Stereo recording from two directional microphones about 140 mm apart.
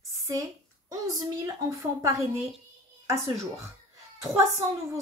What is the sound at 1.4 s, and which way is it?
Speech, 25° right (ahead or behind).